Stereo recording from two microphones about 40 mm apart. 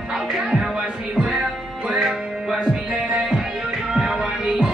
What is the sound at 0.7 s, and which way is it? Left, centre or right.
Music, centre.